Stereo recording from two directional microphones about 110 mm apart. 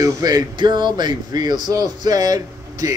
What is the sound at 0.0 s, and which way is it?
Speech, 35° right (ahead or behind).